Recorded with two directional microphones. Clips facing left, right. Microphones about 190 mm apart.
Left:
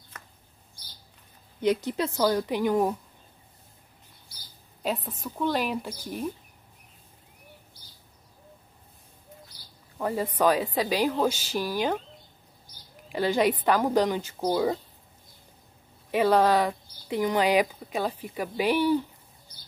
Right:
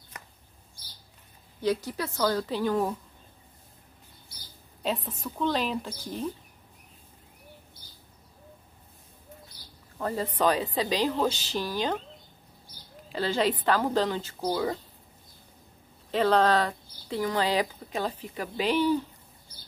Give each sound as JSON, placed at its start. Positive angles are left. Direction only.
{"t": 1.6, "sound": "speech", "side_deg": 20}
{"t": 4.8, "sound": "speech", "side_deg": 0}
{"t": 9.9, "sound": "speech", "side_deg": 10}
{"t": 13.1, "sound": "speech", "side_deg": 15}
{"t": 16.1, "sound": "speech", "side_deg": 10}